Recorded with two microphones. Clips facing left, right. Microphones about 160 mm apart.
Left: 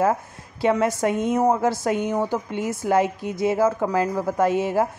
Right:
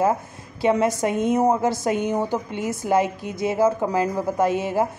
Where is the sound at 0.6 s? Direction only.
15° right (ahead or behind).